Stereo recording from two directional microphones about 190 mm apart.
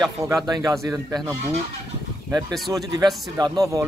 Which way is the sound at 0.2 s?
20° right (ahead or behind).